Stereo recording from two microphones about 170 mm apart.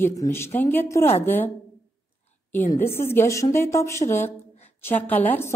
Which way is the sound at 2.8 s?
15° left (ahead or behind).